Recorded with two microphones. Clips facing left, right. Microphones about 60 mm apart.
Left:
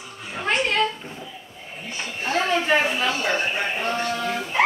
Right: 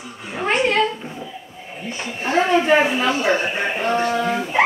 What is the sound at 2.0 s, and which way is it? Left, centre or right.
Speech, right.